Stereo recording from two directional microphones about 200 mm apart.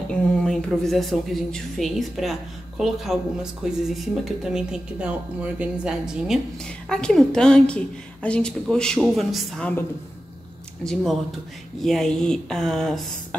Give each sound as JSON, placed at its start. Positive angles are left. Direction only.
{"t": 0.1, "sound": "speech", "side_deg": 5}